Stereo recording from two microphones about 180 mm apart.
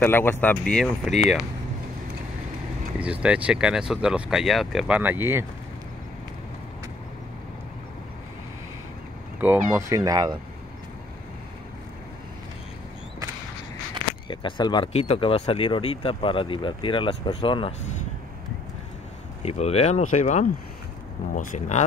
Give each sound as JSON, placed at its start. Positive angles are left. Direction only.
{"t": 0.0, "sound": "speech", "side_deg": 10}
{"t": 3.0, "sound": "speech", "side_deg": -5}
{"t": 9.4, "sound": "speech", "side_deg": -10}
{"t": 14.2, "sound": "speech", "side_deg": 25}
{"t": 19.4, "sound": "speech", "side_deg": 35}